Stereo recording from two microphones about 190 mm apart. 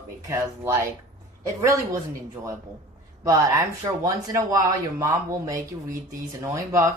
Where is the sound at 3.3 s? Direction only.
15° right (ahead or behind).